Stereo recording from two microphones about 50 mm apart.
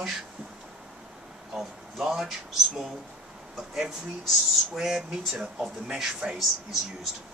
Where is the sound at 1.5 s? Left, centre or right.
Centre.